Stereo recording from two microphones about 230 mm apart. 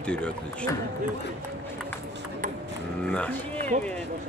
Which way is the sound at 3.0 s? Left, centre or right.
Centre.